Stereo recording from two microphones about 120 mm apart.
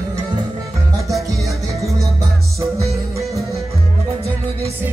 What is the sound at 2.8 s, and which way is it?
Music, 25° right (ahead or behind).